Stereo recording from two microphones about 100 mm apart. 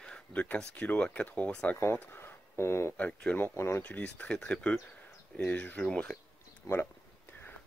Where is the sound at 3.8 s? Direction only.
15° left (ahead or behind).